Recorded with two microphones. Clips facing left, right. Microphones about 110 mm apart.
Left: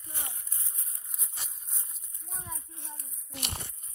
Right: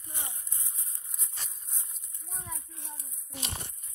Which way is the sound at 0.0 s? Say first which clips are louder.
Even; 20° right (ahead or behind).